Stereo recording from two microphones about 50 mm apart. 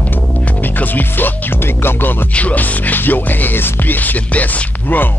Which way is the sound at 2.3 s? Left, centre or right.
Left.